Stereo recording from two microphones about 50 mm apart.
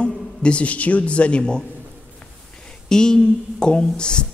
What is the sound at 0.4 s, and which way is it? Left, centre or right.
A man's voice, left.